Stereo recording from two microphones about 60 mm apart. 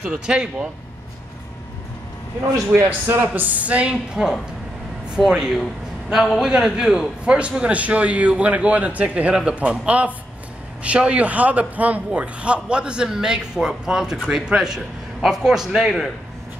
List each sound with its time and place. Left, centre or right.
0.0 s a man's voice: centre
2.7 s a man's voice: right
3.9 s a man's voice: centre